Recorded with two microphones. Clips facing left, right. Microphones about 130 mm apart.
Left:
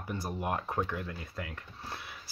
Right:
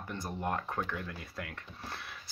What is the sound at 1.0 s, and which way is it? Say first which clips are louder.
Speech: left 2 dB; centre (ahead or behind).